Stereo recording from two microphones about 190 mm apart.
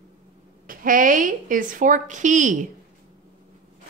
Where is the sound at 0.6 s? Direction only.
45° right (ahead or behind).